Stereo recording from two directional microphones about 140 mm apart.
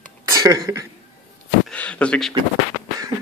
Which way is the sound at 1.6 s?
10° left (ahead or behind).